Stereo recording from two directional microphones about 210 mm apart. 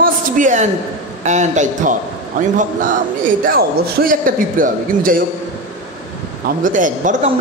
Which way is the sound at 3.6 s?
40° right (ahead or behind).